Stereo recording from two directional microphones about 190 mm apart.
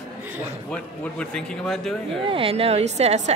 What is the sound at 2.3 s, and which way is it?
A woman's voice, 30° right (ahead or behind).